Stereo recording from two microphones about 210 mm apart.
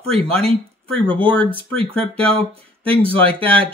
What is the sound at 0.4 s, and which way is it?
Speech, 25° right (ahead or behind).